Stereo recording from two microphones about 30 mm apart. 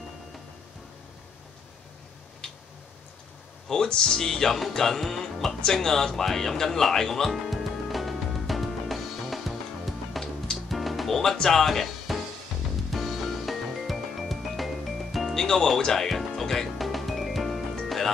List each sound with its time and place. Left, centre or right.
2.4 s tick-tock: left
3.6 s speech: centre
4.7 s music: centre
5.7 s speech: centre
8.8 s music: centre
11.4 s speech: centre
12.9 s music: centre
15.3 s speech: centre
16.1 s music: centre
16.7 s music: centre